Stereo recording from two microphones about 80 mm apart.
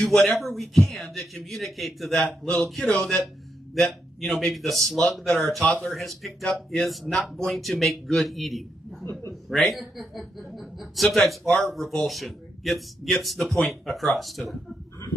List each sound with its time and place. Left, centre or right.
0.0 s speech: centre
4.2 s speech: centre
9.0 s a sound: left
9.3 s a woman's voice: centre